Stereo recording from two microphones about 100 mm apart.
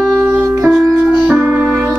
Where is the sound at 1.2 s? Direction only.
15° right (ahead or behind).